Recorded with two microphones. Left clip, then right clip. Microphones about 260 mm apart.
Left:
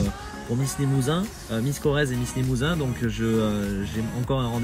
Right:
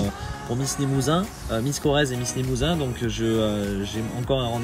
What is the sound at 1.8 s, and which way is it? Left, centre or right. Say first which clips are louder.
Speech: right 2 dB; centre.